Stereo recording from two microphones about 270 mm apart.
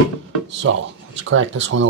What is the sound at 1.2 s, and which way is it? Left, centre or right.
Speech, right.